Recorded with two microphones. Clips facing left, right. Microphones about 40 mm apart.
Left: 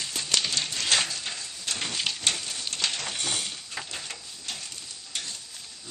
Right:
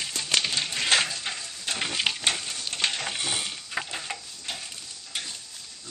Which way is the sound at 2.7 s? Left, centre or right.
Centre.